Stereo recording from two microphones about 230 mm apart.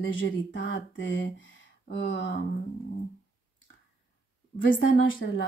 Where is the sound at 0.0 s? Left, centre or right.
Left.